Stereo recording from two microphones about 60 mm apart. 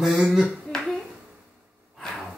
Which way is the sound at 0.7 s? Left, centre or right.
Centre.